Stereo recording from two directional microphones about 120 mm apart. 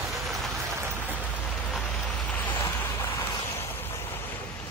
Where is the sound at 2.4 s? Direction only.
20° left (ahead or behind).